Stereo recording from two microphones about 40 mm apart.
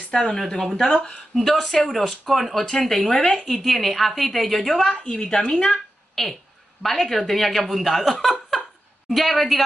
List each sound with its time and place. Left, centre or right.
0.1 s a woman's voice: centre
1.3 s speech: centre
3.4 s speech: centre
4.9 s a woman's voice: left
5.7 s a sound: centre
6.8 s speech: centre